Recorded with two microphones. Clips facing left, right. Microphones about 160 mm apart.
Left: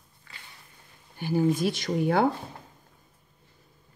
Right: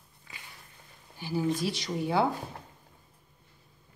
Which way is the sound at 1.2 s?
55° left (ahead or behind).